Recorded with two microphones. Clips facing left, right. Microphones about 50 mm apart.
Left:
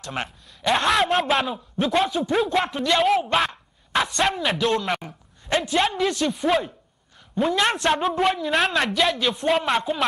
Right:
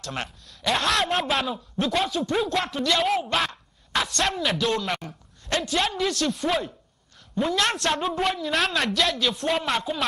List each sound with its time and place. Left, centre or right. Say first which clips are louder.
0.0 s speech: left 2 dB; centre
0.7 s a man's voice: left 4 dB; centre